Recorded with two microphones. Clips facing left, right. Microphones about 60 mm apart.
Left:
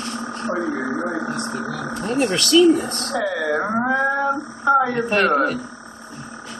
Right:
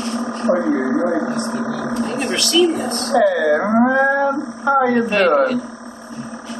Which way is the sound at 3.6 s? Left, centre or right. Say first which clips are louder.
Right 6 dB; centre.